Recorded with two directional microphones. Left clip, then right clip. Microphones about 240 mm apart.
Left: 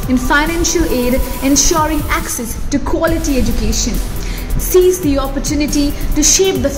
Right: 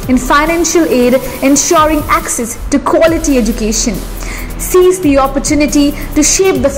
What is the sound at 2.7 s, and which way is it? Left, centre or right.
Speech, centre.